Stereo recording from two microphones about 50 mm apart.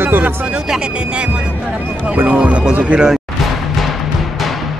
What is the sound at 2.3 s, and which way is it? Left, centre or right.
Speech, right.